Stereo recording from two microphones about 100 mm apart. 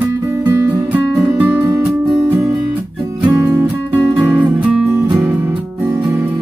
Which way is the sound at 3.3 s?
25° right (ahead or behind).